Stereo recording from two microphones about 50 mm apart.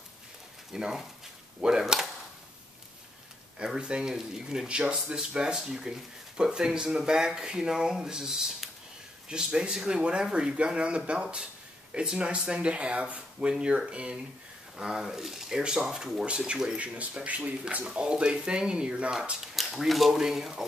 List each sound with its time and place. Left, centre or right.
0.7 s speech: centre
3.5 s speech: centre
17.8 s speech: centre
19.4 s speech: centre